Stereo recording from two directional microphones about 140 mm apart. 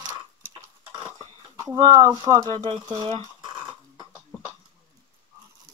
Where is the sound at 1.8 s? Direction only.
30° right (ahead or behind).